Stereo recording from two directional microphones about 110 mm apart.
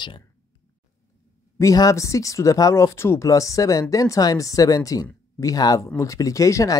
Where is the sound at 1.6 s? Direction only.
30° left (ahead or behind).